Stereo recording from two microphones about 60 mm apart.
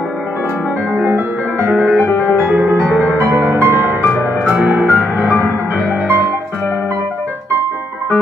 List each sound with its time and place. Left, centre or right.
0.9 s music: right